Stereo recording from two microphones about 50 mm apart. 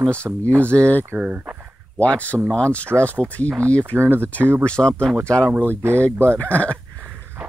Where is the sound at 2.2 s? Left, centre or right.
Right.